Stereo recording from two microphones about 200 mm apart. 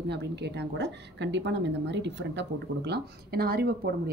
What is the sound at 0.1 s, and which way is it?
A woman's voice, 60° right (ahead or behind).